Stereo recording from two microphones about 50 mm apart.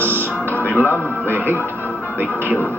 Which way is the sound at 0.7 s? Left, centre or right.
Left.